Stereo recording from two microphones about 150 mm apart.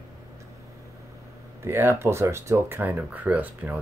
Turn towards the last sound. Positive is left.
turn(degrees=-10)  # may be behind; listen again after turning